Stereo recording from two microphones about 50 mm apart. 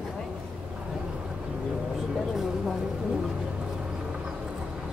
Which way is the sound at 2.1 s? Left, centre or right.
Centre.